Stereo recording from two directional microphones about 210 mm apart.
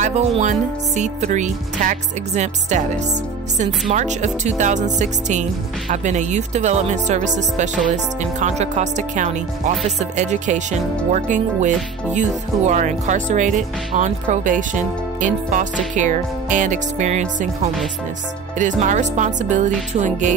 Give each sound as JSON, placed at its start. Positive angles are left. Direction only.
{"t": 0.0, "sound": "speech", "side_deg": -35}
{"t": 3.9, "sound": "speech", "side_deg": -35}
{"t": 18.6, "sound": "speech", "side_deg": -35}